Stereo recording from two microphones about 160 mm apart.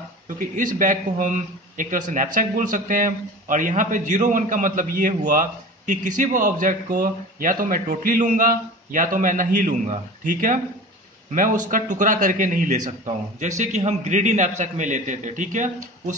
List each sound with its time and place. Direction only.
0.4 s a man's voice: 55° right (ahead or behind)